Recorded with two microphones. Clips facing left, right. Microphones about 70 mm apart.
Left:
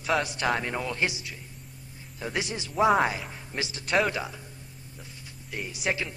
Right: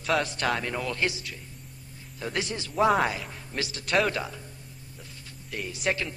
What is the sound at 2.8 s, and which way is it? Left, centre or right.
Speech, centre.